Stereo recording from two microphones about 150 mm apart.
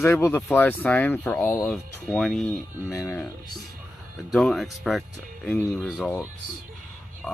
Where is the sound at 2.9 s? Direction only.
15° left (ahead or behind).